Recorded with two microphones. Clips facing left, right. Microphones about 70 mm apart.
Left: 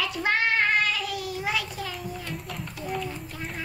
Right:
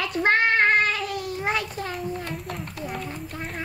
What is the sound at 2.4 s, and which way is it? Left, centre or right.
Speech, right.